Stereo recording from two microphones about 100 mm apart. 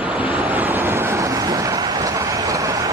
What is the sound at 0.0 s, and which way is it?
Vehicle, 15° right (ahead or behind).